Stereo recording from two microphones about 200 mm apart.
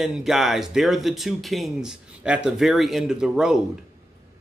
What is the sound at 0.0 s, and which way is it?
Speech, centre (ahead or behind).